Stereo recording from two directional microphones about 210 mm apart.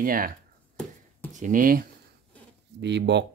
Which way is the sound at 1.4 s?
40° right (ahead or behind).